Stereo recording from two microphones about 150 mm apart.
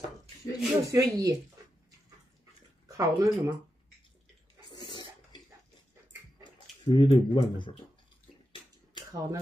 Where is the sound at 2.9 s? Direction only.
20° right (ahead or behind).